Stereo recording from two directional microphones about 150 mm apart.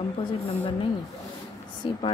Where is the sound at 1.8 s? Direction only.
35° left (ahead or behind).